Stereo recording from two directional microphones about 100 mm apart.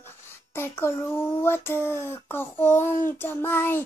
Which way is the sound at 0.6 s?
25° left (ahead or behind).